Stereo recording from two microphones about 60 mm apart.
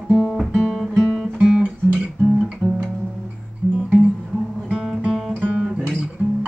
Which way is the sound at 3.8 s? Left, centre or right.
Centre.